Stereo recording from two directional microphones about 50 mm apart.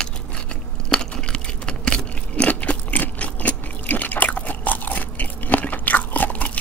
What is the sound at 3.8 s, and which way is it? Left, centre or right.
Chewing, left.